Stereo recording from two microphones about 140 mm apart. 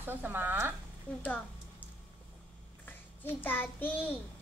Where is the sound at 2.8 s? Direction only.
15° left (ahead or behind).